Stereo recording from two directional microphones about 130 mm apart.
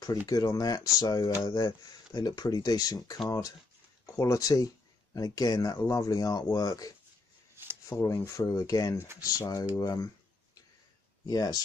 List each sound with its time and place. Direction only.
0.3 s speech: 25° left (ahead or behind)
7.6 s a sound: 20° right (ahead or behind)
7.9 s speech: 20° left (ahead or behind)
8.9 s speech: 20° right (ahead or behind)
9.2 s speech: 25° left (ahead or behind)
11.2 s speech: 30° left (ahead or behind)